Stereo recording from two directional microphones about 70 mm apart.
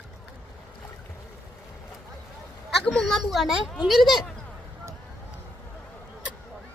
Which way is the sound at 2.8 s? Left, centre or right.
Centre.